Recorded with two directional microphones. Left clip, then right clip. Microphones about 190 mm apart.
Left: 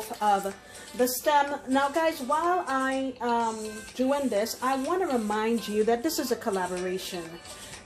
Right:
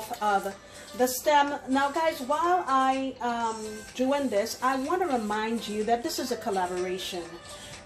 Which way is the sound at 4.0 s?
35° left (ahead or behind).